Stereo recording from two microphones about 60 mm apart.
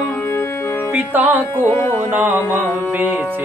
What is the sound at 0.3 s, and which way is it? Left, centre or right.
Music, left.